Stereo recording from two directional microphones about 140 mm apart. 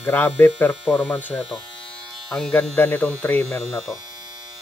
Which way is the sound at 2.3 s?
5° left (ahead or behind).